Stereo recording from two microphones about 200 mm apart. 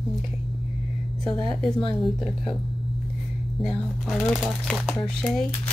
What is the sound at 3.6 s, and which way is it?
Speech, centre (ahead or behind).